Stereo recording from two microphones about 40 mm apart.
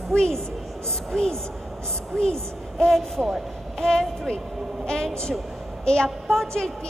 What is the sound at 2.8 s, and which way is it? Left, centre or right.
A woman's voice, centre.